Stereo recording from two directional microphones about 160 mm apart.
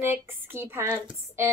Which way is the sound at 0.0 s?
15° right (ahead or behind).